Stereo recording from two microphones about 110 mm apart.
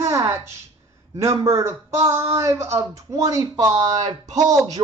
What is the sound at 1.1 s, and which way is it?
A man's voice, 25° right (ahead or behind).